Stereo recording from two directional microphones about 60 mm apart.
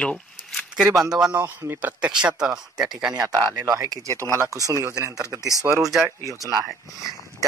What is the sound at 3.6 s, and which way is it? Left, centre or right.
Speech, right.